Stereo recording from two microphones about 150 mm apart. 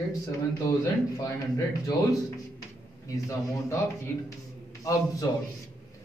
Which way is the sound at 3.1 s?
20° left (ahead or behind).